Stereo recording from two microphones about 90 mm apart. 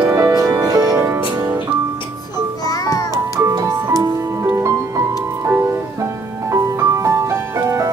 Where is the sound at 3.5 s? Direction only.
40° right (ahead or behind).